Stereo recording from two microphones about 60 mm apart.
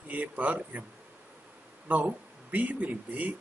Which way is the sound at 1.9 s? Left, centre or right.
Right.